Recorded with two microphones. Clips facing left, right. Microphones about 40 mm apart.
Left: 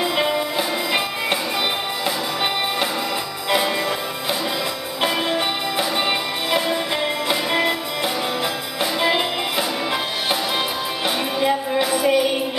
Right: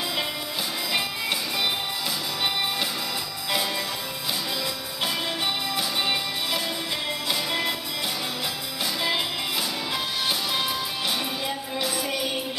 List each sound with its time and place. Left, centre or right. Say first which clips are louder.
0.0 s music: left 9 dB; left
3.4 s music: left 7 dB; left
5.0 s music: left 7 dB; left
9.0 s music: left 7 dB; left
11.4 s music: left 9 dB; left